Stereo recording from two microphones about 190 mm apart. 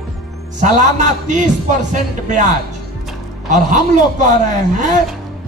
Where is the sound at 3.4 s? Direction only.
40° right (ahead or behind).